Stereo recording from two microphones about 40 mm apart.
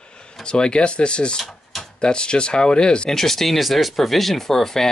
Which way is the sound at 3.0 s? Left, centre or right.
Centre.